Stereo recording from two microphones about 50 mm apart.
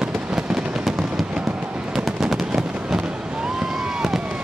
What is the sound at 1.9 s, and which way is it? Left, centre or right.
Fireworks, centre.